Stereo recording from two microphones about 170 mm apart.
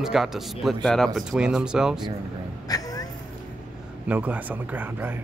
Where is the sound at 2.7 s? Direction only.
20° left (ahead or behind).